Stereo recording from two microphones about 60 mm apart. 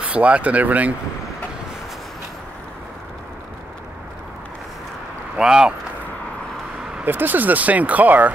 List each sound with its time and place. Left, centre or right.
0.0 s speech: right
5.4 s speech: centre
7.1 s speech: right